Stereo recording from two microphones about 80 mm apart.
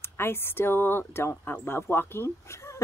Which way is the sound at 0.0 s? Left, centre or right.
Left.